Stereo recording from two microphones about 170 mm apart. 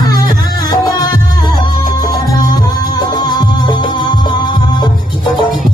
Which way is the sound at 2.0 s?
20° left (ahead or behind).